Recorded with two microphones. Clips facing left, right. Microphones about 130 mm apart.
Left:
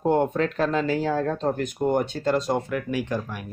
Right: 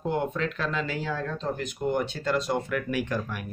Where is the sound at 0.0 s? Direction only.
45° left (ahead or behind).